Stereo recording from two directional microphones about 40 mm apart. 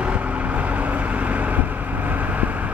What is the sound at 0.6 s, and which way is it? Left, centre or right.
Vehicle, right.